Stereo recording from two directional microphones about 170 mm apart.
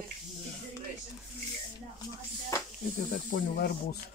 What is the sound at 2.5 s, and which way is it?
Music, 20° left (ahead or behind).